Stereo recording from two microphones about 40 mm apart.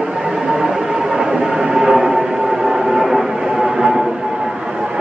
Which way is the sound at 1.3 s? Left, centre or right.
Right.